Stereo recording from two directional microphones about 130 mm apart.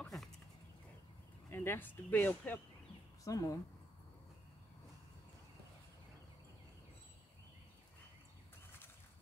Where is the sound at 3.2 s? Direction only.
25° left (ahead or behind).